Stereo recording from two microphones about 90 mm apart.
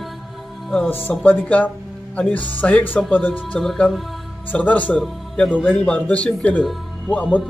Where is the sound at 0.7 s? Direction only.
20° left (ahead or behind).